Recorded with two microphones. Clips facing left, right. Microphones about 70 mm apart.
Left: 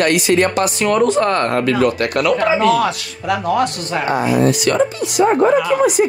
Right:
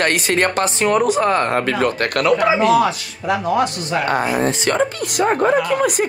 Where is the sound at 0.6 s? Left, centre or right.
Right.